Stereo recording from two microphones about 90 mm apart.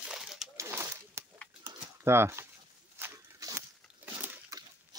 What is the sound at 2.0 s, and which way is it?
Speech, 30° right (ahead or behind).